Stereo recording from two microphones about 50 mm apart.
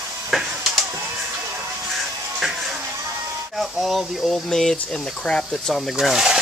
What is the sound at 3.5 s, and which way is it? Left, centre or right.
Speech, centre.